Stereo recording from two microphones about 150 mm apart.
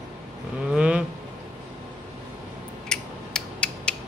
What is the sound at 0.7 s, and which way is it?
Vehicle, 5° right (ahead or behind).